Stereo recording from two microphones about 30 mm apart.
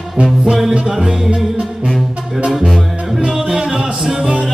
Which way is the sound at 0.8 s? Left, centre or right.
Centre.